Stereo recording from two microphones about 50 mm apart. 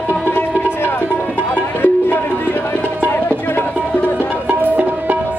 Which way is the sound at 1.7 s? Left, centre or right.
Left.